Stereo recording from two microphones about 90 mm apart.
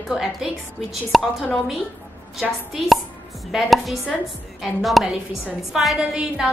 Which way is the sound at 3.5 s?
Centre (ahead or behind).